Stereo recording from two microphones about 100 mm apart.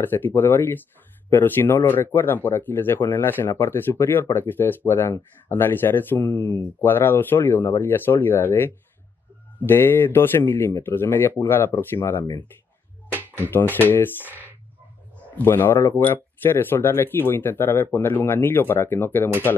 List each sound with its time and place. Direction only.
0.0 s speech: 20° left (ahead or behind)
13.1 s a sound: 20° right (ahead or behind)
13.5 s speech: 20° left (ahead or behind)
15.3 s speech: 20° left (ahead or behind)